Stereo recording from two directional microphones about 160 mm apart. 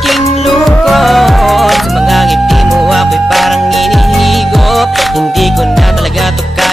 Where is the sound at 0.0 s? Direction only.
Centre (ahead or behind).